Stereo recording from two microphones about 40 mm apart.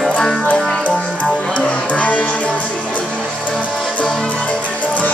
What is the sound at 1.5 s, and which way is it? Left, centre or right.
Music, left.